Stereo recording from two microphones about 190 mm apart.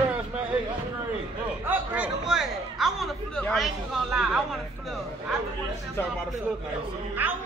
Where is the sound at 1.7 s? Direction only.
5° right (ahead or behind).